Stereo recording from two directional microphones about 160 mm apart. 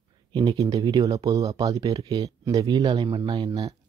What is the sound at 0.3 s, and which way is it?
Speech, 25° right (ahead or behind).